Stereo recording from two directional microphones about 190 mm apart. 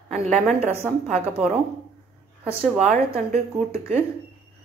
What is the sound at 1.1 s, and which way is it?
A woman's voice, 30° right (ahead or behind).